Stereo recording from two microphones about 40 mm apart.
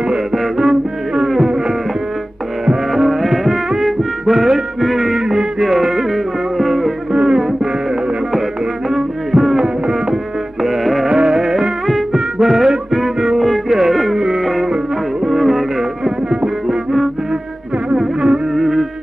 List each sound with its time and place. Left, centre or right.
0.3 s music: centre
3.1 s music: centre
7.1 s music: centre
8.9 s music: centre
11.1 s music: centre
14.4 s music: centre
17.8 s music: right
18.5 s music: centre